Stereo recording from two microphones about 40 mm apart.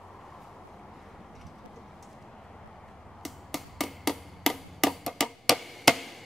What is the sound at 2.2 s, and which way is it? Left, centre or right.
Arrow, centre.